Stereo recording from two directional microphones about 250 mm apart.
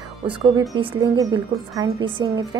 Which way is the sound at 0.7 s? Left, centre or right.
Right.